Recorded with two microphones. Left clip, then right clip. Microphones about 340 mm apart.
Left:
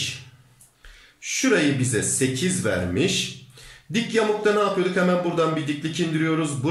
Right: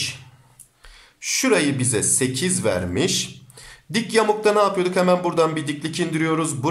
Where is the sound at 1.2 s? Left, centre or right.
Centre.